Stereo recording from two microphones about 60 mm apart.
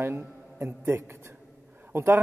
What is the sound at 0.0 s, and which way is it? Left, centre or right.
A man's voice, right.